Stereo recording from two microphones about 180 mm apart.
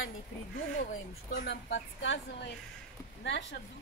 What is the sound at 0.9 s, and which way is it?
Speech, 80° left.